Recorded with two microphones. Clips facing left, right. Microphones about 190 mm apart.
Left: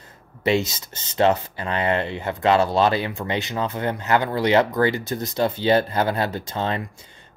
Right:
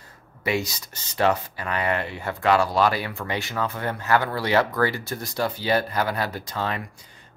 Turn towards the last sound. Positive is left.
turn(degrees=25)  # may be behind; listen again after turning